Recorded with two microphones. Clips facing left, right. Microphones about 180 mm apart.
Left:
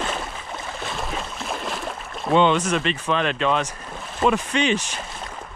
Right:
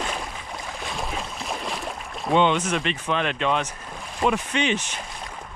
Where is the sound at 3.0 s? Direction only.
10° right (ahead or behind).